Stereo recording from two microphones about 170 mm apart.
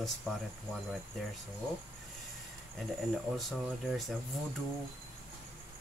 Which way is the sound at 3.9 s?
Centre (ahead or behind).